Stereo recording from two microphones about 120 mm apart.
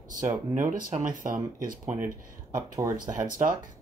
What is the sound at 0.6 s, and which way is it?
Speech, 90° right.